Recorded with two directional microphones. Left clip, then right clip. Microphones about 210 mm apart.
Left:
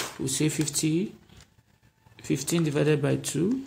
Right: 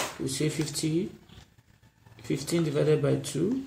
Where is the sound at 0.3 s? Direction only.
45° left (ahead or behind).